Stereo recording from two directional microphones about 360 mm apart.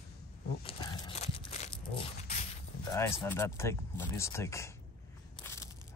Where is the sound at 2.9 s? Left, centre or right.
Centre.